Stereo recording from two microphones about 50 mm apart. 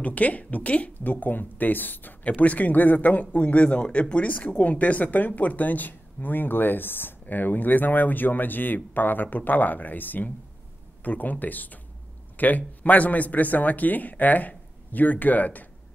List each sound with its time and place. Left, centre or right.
0.0 s speech: left